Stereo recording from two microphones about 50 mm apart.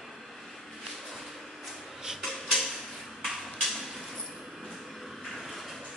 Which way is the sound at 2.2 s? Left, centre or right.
Centre.